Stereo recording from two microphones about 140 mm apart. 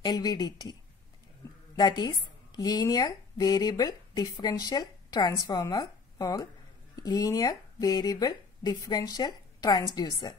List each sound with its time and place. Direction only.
0.0 s speech: 30° left (ahead or behind)
1.8 s a woman's voice: 30° left (ahead or behind)